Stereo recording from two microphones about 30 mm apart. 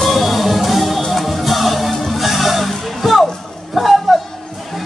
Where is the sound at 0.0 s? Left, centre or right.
Centre.